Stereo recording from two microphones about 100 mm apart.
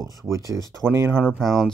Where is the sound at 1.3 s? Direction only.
5° right (ahead or behind).